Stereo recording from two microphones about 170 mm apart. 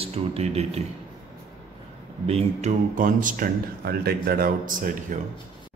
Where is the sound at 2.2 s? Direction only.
40° right (ahead or behind).